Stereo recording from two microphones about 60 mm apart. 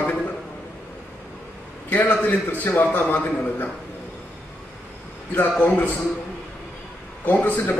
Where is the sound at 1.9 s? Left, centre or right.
Left.